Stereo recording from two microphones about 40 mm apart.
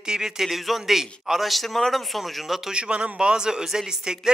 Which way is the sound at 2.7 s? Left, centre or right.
Right.